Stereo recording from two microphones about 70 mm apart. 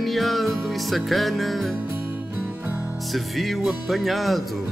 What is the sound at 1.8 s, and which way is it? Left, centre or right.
Music, right.